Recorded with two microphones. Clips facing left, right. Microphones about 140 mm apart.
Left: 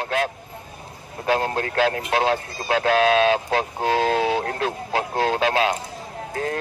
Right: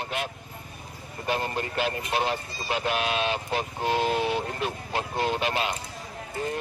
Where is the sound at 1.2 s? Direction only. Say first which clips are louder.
Left 6 dB; 90° left.